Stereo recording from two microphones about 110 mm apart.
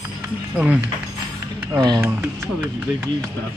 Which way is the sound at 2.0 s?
20° right (ahead or behind).